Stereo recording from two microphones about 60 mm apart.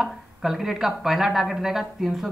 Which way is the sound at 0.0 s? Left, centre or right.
Centre.